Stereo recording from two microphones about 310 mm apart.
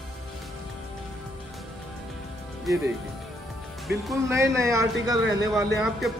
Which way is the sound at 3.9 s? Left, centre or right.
Centre.